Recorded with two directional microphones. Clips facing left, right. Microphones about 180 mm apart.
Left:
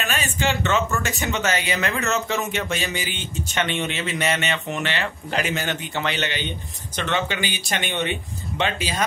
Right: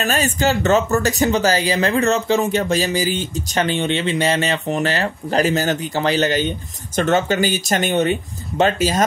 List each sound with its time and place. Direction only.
0.0 s speech: 40° right (ahead or behind)